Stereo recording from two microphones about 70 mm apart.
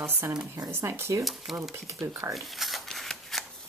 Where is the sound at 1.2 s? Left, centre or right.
Centre.